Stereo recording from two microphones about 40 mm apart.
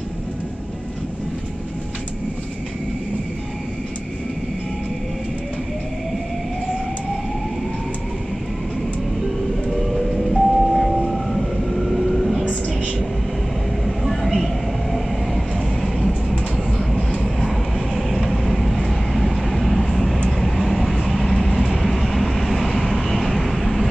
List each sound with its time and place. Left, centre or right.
9.8 s vehicle: centre
12.4 s a sound: left
13.8 s train: centre
16.7 s vehicle: centre